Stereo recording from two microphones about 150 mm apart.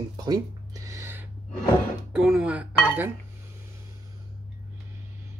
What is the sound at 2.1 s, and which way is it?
Speech, 5° right (ahead or behind).